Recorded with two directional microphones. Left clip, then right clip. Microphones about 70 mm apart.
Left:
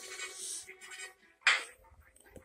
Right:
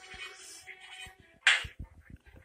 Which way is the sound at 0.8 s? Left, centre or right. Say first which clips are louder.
Even; left.